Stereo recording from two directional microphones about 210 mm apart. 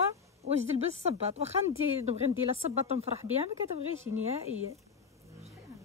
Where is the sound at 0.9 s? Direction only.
30° right (ahead or behind).